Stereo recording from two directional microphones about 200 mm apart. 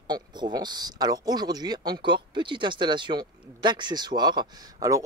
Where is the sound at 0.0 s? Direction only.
20° right (ahead or behind).